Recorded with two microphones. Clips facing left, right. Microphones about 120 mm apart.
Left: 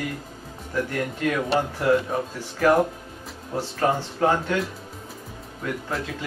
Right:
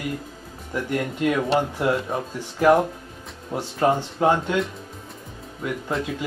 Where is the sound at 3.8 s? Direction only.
15° right (ahead or behind).